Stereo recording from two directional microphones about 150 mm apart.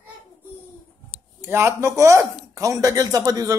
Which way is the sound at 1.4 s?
15° right (ahead or behind).